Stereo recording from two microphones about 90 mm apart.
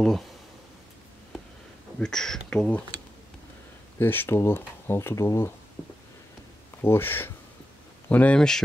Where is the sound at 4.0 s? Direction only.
25° left (ahead or behind).